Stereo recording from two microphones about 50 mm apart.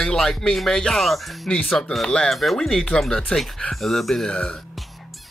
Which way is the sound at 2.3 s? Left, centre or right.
Centre.